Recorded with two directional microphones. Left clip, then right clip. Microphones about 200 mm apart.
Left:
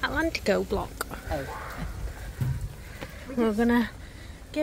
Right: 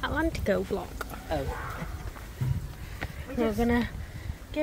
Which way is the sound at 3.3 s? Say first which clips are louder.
Left 2 dB; 20° left (ahead or behind).